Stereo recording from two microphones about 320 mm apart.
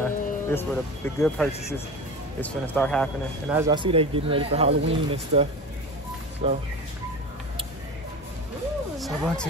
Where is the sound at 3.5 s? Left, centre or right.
Centre.